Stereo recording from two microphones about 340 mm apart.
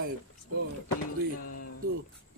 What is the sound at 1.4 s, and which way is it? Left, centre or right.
Music, left.